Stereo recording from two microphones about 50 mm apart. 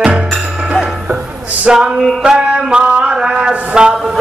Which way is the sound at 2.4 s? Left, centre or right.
Centre.